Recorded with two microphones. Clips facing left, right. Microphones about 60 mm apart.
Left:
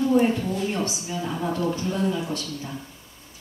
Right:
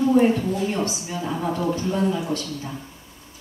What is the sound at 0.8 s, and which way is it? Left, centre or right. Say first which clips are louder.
Speech: right 2 dB; right.